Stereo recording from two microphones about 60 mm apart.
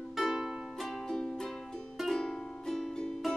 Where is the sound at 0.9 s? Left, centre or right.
Centre.